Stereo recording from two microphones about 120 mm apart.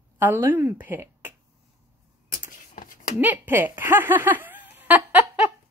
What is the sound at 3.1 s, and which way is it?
Speech, 15° right (ahead or behind).